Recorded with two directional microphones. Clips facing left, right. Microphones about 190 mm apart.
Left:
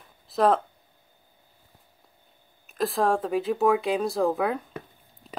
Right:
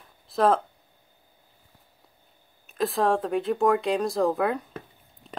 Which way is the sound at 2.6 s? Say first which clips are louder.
Even; centre (ahead or behind).